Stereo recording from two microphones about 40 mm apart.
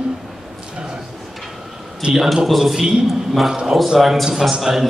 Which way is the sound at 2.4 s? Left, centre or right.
Centre.